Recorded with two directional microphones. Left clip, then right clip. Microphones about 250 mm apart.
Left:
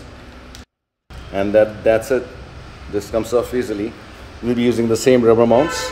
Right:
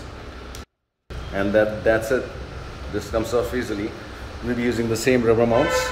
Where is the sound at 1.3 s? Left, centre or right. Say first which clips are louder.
Left 5 dB; left.